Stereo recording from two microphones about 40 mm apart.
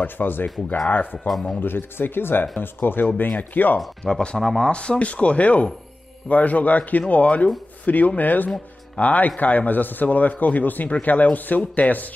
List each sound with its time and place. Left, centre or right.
0.0 s speech: left
3.3 s a man's voice: left
4.0 s speech: centre
4.6 s a man's voice: left